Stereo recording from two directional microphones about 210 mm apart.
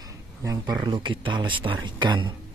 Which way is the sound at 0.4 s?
15° right (ahead or behind).